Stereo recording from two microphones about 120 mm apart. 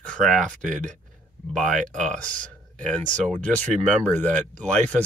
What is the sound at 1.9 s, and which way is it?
Speech, 90° right.